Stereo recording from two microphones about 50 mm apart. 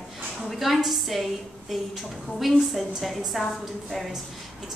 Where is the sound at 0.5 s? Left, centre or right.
Centre.